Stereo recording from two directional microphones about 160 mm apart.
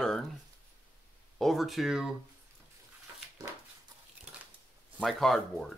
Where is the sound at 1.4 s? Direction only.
Centre (ahead or behind).